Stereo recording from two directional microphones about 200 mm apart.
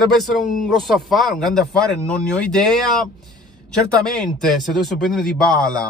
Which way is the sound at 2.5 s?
Centre (ahead or behind).